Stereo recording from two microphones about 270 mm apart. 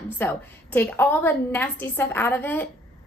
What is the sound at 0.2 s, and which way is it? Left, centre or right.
A woman's voice, centre.